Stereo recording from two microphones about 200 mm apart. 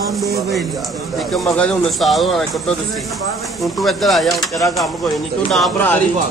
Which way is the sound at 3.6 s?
Centre (ahead or behind).